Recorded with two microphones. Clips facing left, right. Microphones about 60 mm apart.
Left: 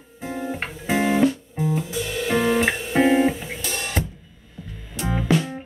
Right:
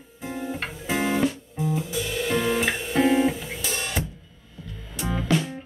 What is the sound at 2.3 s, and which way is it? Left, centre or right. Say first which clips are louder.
Music: left 4 dB; centre.